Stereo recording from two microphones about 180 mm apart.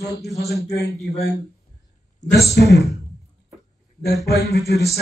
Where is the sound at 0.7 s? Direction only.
65° left (ahead or behind).